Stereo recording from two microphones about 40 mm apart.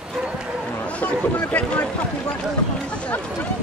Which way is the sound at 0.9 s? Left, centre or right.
Left.